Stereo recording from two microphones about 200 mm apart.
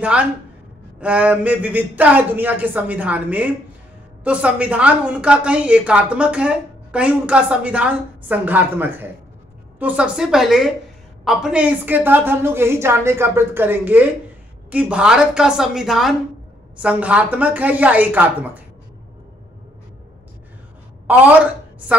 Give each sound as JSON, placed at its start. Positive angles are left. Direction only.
{"t": 1.0, "sound": "a woman's voice", "side_deg": -5}
{"t": 21.1, "sound": "a woman's voice", "side_deg": -10}